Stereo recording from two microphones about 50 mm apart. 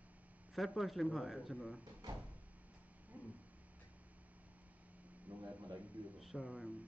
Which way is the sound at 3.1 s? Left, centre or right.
Right.